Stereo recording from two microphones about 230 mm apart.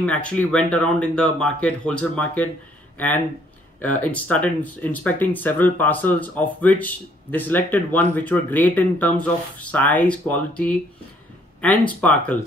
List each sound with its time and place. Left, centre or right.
0.0 s speech: centre
3.8 s speech: centre
11.9 s speech: centre